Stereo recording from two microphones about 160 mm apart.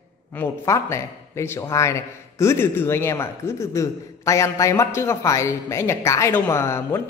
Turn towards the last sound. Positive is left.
turn(degrees=15)  # may be behind; listen again after turning